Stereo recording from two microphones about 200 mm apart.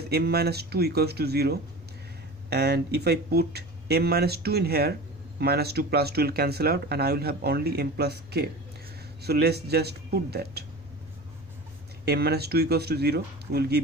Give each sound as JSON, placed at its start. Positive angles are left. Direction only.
{"t": 0.1, "sound": "speech", "side_deg": -55}
{"t": 12.0, "sound": "speech", "side_deg": -50}